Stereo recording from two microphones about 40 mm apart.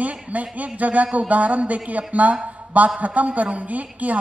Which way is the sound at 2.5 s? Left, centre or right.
Right.